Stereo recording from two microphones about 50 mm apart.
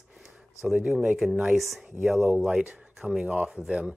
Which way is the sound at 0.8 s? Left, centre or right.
Right.